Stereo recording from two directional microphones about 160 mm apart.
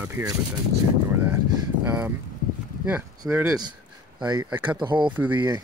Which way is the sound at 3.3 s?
15° right (ahead or behind).